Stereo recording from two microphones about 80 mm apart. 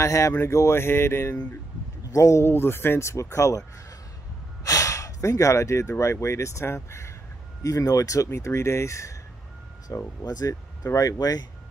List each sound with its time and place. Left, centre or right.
0.0 s speech: left
2.0 s speech: left
4.6 s speech: left
7.6 s speech: left
8.3 s speech: left
10.2 s speech: left